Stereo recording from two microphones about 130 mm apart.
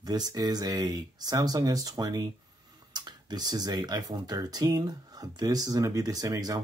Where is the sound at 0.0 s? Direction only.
30° right (ahead or behind).